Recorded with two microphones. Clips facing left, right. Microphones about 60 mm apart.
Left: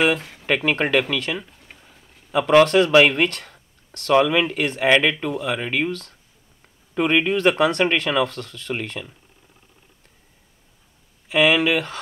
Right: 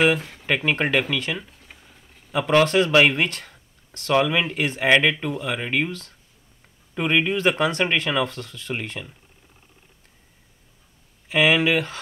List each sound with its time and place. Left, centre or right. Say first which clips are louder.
0.0 s speech: even; centre
2.6 s speech: left 3 dB; centre
2.9 s speech: left 3 dB; centre
5.9 s speech: left 5 dB; centre
6.9 s speech: left 2 dB; centre
11.2 s speech: left 1 dB; centre